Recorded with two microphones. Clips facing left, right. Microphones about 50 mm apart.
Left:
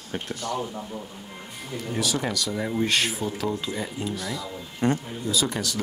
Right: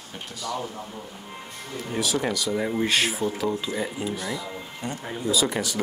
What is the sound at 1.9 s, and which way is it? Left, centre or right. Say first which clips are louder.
Speech: right 1 dB; centre.